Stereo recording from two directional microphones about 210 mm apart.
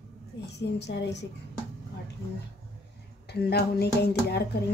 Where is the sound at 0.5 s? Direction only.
55° left (ahead or behind).